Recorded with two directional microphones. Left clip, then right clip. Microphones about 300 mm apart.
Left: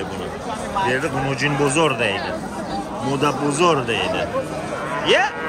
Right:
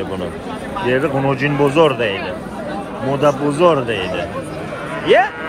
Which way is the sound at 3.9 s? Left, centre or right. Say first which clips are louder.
Even; left.